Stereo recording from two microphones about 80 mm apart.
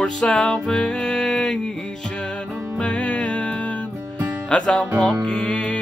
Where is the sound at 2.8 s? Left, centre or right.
Centre.